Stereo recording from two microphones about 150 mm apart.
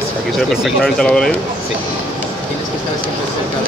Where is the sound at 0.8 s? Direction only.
5° left (ahead or behind).